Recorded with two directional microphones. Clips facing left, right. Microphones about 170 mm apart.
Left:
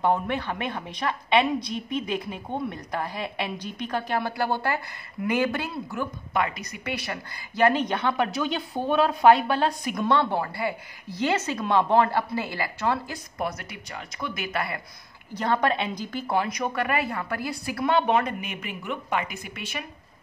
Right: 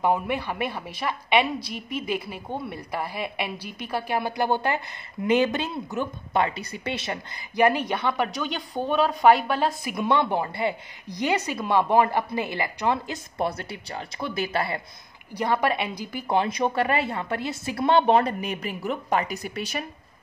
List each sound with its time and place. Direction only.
0.0 s a woman's voice: 10° right (ahead or behind)
7.6 s a woman's voice: 5° right (ahead or behind); by 14.8 s 30° right (ahead or behind)
15.3 s a woman's voice: 10° right (ahead or behind)
16.3 s a woman's voice: 25° right (ahead or behind)